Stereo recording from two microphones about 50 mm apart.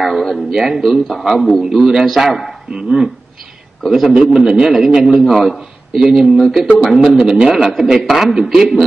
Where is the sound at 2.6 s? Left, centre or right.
Centre.